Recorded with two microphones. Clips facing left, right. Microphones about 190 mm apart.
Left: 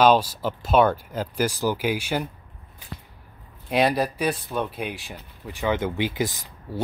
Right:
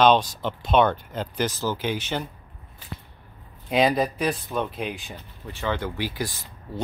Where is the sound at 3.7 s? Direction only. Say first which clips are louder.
Even; centre (ahead or behind).